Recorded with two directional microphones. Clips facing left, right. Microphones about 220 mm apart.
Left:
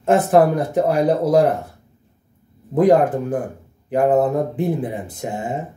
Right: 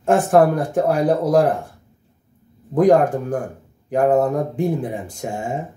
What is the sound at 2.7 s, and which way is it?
Speech, 5° left (ahead or behind).